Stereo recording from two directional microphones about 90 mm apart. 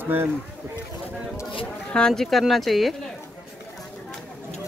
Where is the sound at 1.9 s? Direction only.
5° left (ahead or behind).